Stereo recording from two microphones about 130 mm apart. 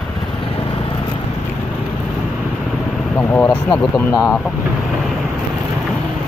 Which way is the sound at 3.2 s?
10° left (ahead or behind).